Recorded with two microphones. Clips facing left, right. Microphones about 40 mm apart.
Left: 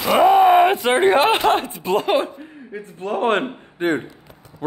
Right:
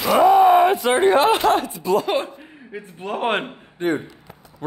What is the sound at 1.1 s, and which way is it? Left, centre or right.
Speech, left.